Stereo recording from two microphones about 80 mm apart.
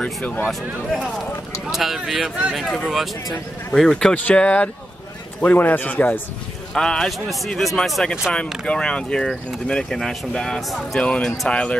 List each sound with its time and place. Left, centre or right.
0.5 s speech: centre
4.1 s a man's voice: centre
6.7 s speech: centre